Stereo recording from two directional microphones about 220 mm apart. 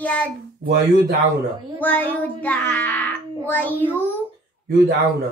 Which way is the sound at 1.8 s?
5° left (ahead or behind).